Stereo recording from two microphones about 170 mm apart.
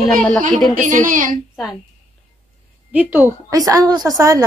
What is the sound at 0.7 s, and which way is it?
Speech, 50° right (ahead or behind).